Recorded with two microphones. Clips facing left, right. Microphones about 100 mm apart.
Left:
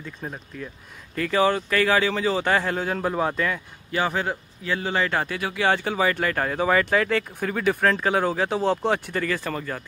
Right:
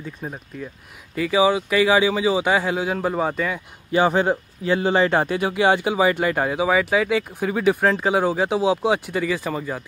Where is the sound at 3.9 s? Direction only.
20° right (ahead or behind).